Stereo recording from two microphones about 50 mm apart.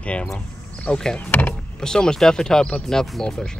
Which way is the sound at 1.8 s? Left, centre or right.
Centre.